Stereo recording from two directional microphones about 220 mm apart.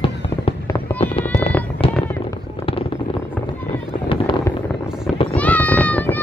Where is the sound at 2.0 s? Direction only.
10° left (ahead or behind).